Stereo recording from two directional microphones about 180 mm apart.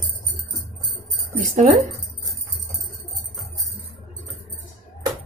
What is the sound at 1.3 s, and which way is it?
Keys jangling, 40° right (ahead or behind).